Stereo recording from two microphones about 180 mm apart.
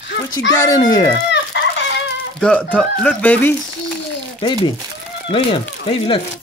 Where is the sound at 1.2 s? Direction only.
75° left (ahead or behind).